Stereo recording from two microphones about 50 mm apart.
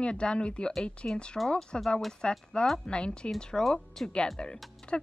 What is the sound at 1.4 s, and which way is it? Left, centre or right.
Speech, centre.